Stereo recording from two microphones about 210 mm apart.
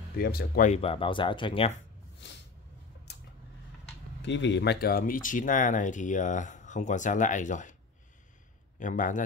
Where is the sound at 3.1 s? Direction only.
55° left (ahead or behind).